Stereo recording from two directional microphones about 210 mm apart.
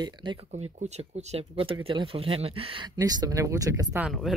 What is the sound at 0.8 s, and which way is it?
Speech, 30° right (ahead or behind).